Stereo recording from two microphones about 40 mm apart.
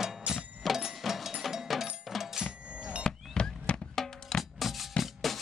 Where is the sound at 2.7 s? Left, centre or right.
Right.